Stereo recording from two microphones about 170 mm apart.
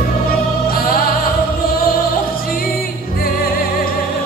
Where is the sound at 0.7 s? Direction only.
60° left (ahead or behind).